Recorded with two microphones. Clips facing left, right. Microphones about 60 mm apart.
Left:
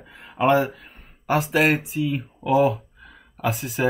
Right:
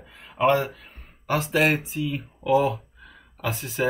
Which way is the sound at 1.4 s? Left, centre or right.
Centre.